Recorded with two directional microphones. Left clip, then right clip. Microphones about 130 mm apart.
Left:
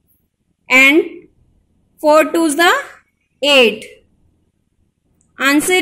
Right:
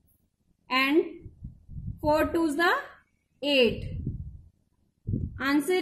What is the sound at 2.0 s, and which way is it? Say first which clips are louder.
A woman's voice: left 14 dB; 30° left (ahead or behind).